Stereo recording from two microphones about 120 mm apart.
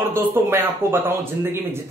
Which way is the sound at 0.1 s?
20° right (ahead or behind).